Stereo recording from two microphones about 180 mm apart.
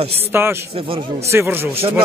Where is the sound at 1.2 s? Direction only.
15° right (ahead or behind).